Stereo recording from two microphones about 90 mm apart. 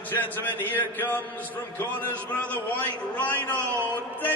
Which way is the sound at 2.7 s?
20° left (ahead or behind).